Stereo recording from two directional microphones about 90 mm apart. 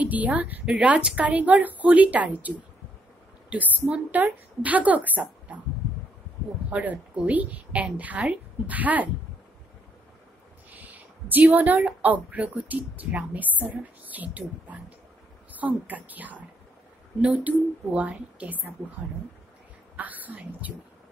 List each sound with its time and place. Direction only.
0.0 s a woman's voice: 15° right (ahead or behind)
6.7 s speech: 15° right (ahead or behind)
10.7 s a woman's voice: 20° right (ahead or behind)
17.5 s speech: 15° right (ahead or behind)
20.0 s speech: 20° right (ahead or behind)